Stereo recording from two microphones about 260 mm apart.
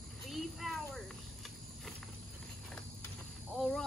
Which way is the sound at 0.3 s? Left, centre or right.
Centre.